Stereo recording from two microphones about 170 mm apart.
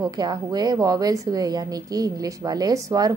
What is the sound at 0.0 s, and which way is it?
A woman's voice, 25° right (ahead or behind).